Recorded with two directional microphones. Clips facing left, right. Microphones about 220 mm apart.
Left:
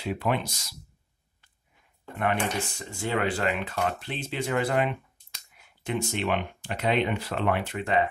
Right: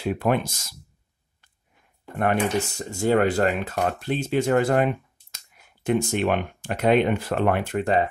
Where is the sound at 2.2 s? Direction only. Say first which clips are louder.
Right 5 dB; 45° right (ahead or behind).